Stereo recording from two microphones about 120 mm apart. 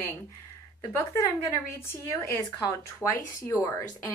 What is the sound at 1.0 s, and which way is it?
Speech, 20° left (ahead or behind).